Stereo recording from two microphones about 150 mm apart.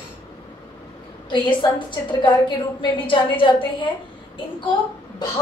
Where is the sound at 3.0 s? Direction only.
35° left (ahead or behind).